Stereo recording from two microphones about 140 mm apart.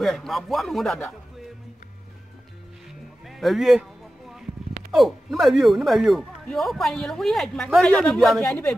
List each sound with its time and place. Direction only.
0.0 s speech: centre (ahead or behind)
3.3 s speech: centre (ahead or behind)
4.9 s speech: centre (ahead or behind)